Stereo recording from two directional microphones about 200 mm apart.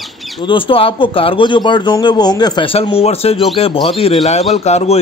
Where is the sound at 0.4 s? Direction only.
25° left (ahead or behind).